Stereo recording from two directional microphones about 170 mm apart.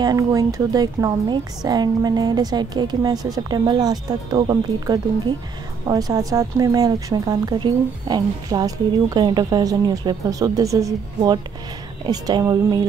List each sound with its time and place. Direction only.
0.0 s speech: 20° right (ahead or behind)